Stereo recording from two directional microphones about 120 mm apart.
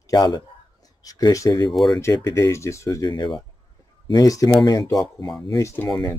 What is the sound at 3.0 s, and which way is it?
Speech, 35° left (ahead or behind).